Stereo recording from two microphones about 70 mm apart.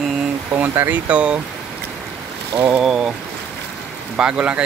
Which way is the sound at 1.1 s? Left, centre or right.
Centre.